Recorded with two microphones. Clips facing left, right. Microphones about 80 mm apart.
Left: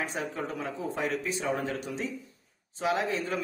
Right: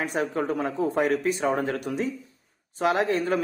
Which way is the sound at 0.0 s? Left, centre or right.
Right.